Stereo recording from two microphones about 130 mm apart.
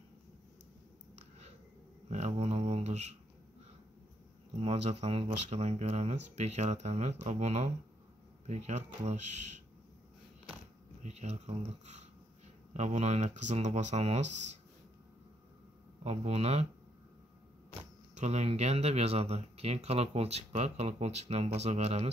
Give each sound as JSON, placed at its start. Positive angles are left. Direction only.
{"t": 2.0, "sound": "a sound", "side_deg": -55}
{"t": 4.6, "sound": "speech", "side_deg": -55}
{"t": 11.0, "sound": "speech", "side_deg": -60}
{"t": 16.0, "sound": "speech", "side_deg": -55}
{"t": 18.1, "sound": "speech", "side_deg": -60}